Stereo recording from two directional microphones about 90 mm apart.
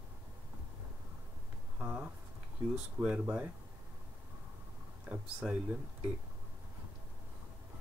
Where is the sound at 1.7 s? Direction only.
15° right (ahead or behind).